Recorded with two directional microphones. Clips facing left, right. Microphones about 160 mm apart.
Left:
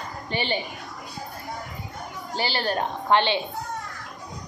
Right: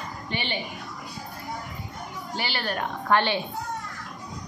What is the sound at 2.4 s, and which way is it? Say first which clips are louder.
Speech: left 4 dB; 35° left (ahead or behind).